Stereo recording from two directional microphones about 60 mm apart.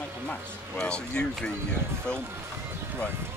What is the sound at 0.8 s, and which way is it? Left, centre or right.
Speech, centre.